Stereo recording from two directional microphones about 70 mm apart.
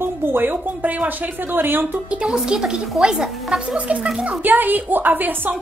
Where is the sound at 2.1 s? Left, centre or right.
Centre.